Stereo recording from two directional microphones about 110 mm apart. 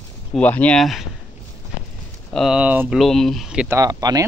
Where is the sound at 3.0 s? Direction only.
5° left (ahead or behind).